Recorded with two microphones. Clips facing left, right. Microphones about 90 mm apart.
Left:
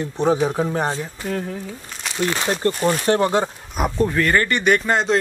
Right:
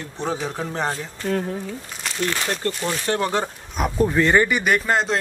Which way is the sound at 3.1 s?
20° left (ahead or behind).